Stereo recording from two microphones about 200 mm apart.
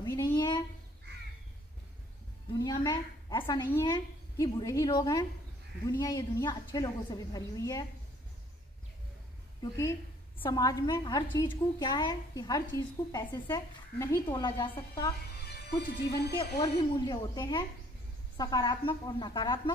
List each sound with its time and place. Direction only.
0.0 s a sound: 20° left (ahead or behind)
2.6 s a woman's voice: 15° left (ahead or behind)
9.6 s a woman's voice: 15° left (ahead or behind)
15.5 s speech: 55° left (ahead or behind)
16.3 s a woman's voice: 20° left (ahead or behind)